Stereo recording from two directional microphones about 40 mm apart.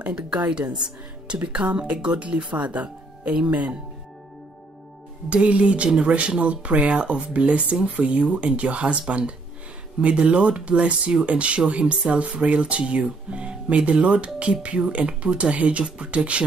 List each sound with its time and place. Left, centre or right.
0.5 s speech: right
5.3 s speech: right